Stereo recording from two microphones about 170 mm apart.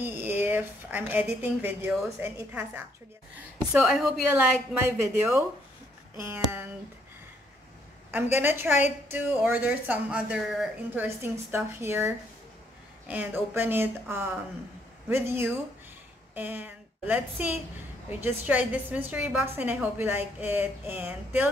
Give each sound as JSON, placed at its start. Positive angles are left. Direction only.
{"t": 0.0, "sound": "a woman's voice", "side_deg": -10}
{"t": 2.2, "sound": "a woman's voice", "side_deg": -10}
{"t": 8.1, "sound": "a woman's voice", "side_deg": -10}
{"t": 13.1, "sound": "a woman's voice", "side_deg": -10}